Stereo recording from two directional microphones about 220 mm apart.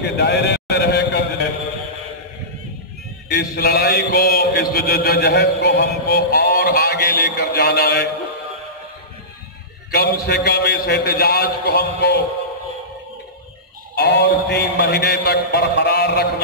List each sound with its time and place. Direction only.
0.0 s a sound: 50° left (ahead or behind)
3.3 s mantra: 45° left (ahead or behind)
9.8 s mantra: 50° left (ahead or behind)
13.9 s mantra: 50° left (ahead or behind)